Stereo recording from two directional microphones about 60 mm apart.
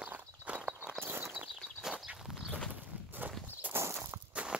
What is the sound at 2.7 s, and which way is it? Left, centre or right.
Walk, right.